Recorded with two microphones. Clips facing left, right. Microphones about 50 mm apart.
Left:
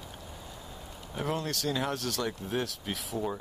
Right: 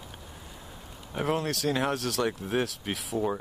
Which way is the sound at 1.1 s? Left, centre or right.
Centre.